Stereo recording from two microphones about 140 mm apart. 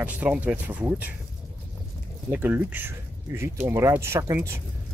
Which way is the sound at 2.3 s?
15° right (ahead or behind).